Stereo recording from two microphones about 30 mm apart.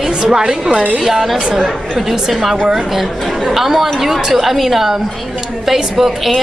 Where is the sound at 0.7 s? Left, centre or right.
Right.